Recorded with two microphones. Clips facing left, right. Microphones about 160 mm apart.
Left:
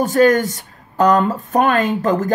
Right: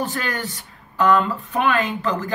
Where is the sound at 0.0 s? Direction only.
40° left (ahead or behind).